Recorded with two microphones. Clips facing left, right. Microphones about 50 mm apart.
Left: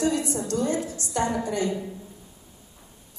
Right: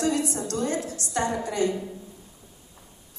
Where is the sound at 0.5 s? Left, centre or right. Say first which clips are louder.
Left 2 dB; right.